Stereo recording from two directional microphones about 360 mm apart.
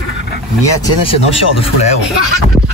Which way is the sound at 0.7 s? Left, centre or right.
Centre.